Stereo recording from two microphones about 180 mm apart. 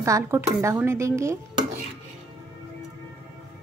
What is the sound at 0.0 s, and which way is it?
Speech, 15° right (ahead or behind).